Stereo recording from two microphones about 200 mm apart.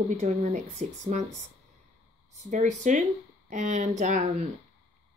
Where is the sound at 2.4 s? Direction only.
40° right (ahead or behind).